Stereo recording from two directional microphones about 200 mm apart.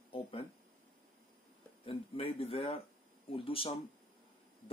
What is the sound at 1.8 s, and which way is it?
Speech, 30° left (ahead or behind).